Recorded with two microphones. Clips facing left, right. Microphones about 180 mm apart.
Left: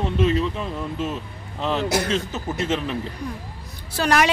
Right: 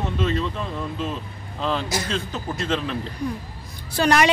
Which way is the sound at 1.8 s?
65° left (ahead or behind).